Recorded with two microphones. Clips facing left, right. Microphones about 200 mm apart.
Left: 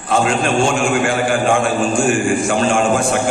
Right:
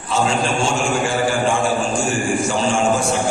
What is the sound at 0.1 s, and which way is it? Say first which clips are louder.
A man's voice: left 3 dB; 55° left (ahead or behind).